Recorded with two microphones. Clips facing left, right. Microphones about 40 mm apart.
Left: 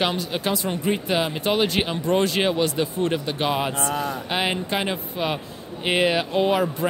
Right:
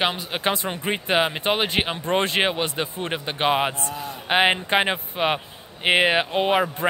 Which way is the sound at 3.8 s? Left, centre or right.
Left.